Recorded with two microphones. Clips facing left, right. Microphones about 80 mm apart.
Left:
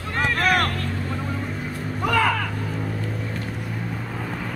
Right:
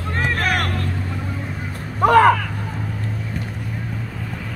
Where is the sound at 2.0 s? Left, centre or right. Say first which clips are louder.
Right 9 dB; right.